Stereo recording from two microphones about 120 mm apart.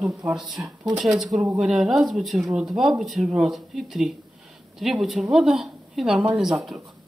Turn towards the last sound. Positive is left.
turn(degrees=0)  # may be behind; listen again after turning